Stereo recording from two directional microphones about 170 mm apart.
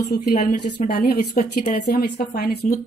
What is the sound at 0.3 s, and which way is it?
Speech, 45° left (ahead or behind).